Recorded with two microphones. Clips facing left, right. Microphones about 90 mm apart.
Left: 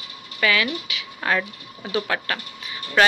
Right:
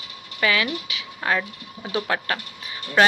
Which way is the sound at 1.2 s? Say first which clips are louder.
Left 1 dB; 5° right (ahead or behind).